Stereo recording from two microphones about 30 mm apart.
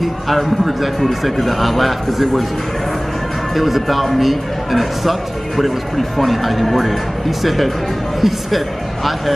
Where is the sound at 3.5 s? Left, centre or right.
Centre.